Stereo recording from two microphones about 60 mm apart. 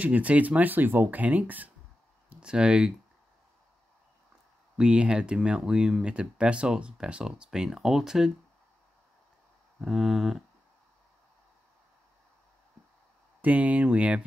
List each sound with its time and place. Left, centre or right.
0.0 s speech: right
2.4 s speech: centre
4.7 s speech: centre
9.8 s speech: centre
13.4 s speech: right